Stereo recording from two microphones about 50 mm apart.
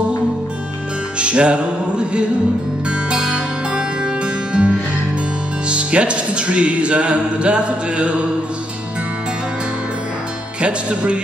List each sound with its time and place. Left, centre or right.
1.2 s music: right
10.6 s music: right